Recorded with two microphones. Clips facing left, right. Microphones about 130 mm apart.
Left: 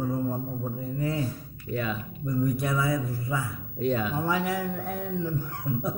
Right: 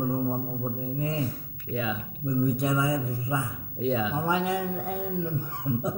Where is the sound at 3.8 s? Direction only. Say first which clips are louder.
Even; centre (ahead or behind).